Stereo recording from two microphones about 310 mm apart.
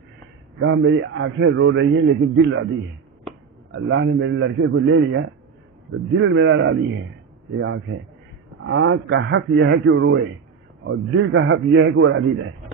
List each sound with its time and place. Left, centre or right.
0.6 s a man's voice: right